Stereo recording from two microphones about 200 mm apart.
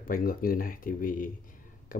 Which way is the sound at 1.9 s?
45° left (ahead or behind).